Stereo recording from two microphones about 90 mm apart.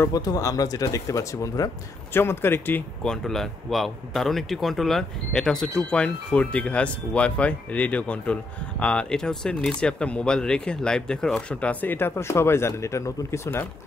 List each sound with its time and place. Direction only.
0.1 s speech: 45° left (ahead or behind)
2.1 s speech: 25° left (ahead or behind)
3.0 s speech: 5° left (ahead or behind); by 13.7 s 30° left (ahead or behind)